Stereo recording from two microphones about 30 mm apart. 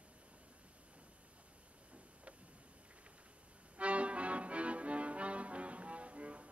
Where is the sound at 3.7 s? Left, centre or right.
Right.